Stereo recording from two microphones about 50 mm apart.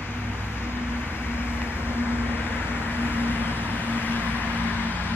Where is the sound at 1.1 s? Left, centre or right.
Left.